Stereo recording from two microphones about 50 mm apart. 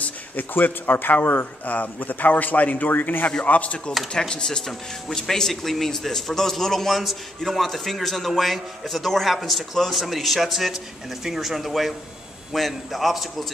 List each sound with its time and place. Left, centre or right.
0.0 s speech: left
3.4 s speech: left
4.1 s speech: centre